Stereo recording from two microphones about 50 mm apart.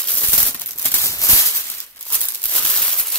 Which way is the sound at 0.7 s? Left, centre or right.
Left.